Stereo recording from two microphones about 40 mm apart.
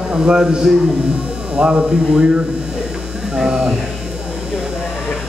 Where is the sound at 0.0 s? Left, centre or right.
Centre.